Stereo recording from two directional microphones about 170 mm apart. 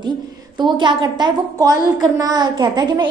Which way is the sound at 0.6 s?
25° right (ahead or behind).